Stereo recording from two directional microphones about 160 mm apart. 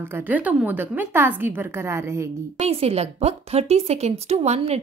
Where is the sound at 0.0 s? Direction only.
10° right (ahead or behind).